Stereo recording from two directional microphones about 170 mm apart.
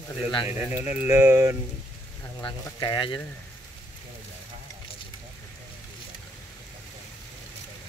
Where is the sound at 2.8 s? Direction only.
25° left (ahead or behind).